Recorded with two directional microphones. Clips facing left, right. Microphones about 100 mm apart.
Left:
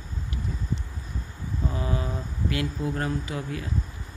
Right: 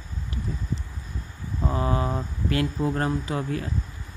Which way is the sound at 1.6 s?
40° right (ahead or behind).